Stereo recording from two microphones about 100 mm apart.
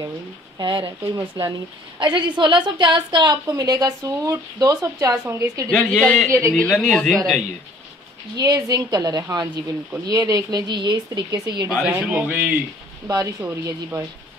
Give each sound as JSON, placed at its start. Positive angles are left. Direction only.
{"t": 0.6, "sound": "a woman's voice", "side_deg": -50}
{"t": 1.1, "sound": "speech", "side_deg": -30}
{"t": 2.0, "sound": "a woman's voice", "side_deg": -50}
{"t": 3.4, "sound": "speech", "side_deg": -40}
{"t": 5.8, "sound": "speech", "side_deg": 5}
{"t": 8.4, "sound": "a woman's voice", "side_deg": -40}
{"t": 11.2, "sound": "speech", "side_deg": -35}
{"t": 11.9, "sound": "speech", "side_deg": -20}
{"t": 13.1, "sound": "speech", "side_deg": -35}